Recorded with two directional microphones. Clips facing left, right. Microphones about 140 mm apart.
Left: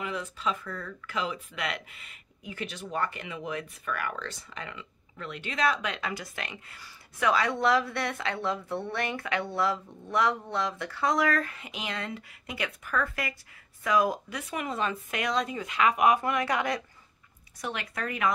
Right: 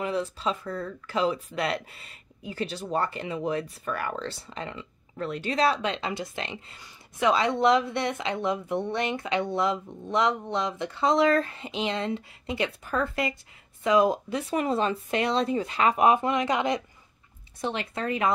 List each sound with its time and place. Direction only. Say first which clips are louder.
0.0 s speech: right 4 dB; 30° right (ahead or behind)